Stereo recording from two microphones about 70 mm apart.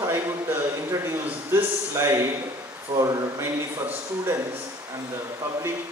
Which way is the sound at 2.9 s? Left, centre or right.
Right.